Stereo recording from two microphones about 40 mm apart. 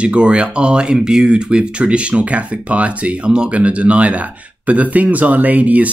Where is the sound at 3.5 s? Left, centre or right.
Right.